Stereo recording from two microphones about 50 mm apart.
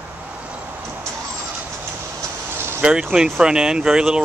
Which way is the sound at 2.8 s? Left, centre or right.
Centre.